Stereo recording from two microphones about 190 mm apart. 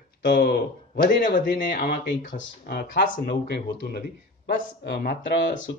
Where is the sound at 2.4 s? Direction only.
60° left (ahead or behind).